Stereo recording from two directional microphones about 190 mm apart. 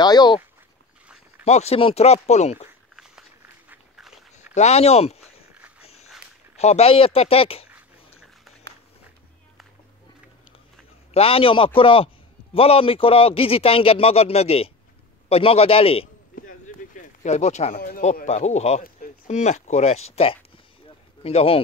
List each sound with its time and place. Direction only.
0.0 s a man's voice: 20° left (ahead or behind)
1.4 s speech: 35° left (ahead or behind)
3.0 s walk: 5° right (ahead or behind)
4.6 s speech: 35° left (ahead or behind)
5.8 s dog: 30° left (ahead or behind)
6.5 s speech: 35° left (ahead or behind)
11.1 s a man's voice: 30° left (ahead or behind)
16.3 s a sound: 45° left (ahead or behind)
17.7 s speech: 45° left (ahead or behind); by 21.5 s 30° left (ahead or behind)